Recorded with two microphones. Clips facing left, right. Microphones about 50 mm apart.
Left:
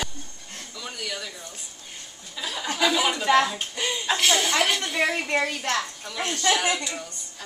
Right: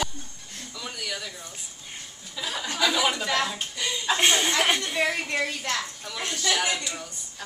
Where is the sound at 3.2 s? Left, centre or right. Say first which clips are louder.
Left 6 dB; left.